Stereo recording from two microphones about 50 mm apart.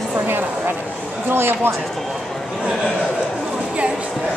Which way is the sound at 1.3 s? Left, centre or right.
Right.